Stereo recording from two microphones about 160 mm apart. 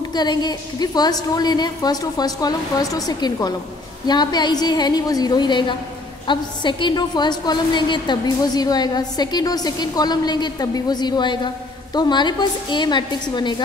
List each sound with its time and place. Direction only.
0.1 s a woman's voice: 25° left (ahead or behind)